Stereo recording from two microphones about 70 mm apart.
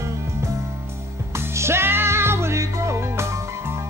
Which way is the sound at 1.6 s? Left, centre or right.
Right.